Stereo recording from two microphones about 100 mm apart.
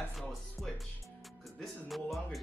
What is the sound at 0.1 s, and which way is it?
Music, centre (ahead or behind).